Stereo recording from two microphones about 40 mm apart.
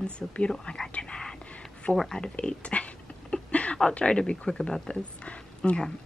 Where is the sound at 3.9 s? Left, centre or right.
Left.